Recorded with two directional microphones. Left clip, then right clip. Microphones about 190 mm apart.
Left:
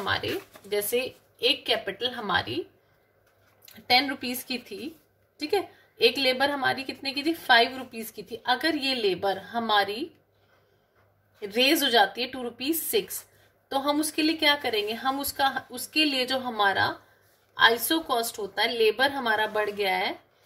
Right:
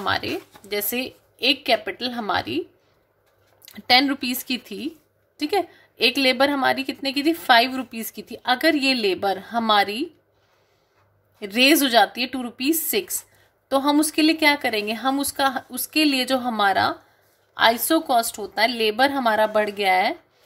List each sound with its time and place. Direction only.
0.0 s a woman's voice: 60° right (ahead or behind)
3.6 s a woman's voice: 65° right (ahead or behind)
11.3 s a woman's voice: 65° right (ahead or behind)